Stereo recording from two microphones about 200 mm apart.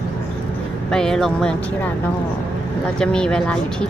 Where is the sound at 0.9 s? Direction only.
5° left (ahead or behind).